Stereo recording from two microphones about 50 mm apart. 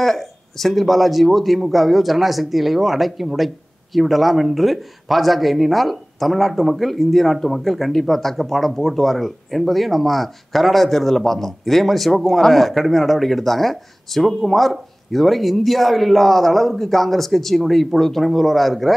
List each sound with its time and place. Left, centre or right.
0.0 s a man's voice: centre